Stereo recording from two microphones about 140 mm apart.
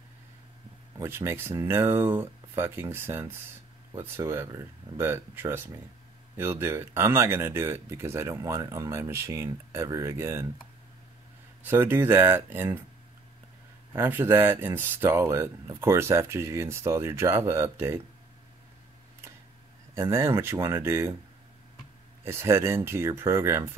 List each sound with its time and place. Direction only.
0.9 s speech: 20° right (ahead or behind)
11.6 s speech: 15° right (ahead or behind)
13.9 s speech: 15° right (ahead or behind)
19.9 s speech: 20° right (ahead or behind)
22.2 s speech: 20° right (ahead or behind)